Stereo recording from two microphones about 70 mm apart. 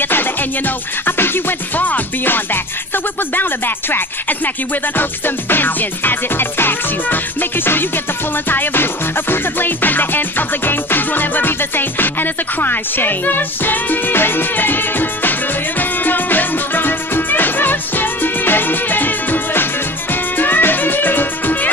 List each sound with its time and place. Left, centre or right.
0.0 s music: left